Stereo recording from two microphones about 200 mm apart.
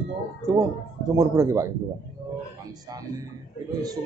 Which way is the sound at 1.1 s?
15° right (ahead or behind).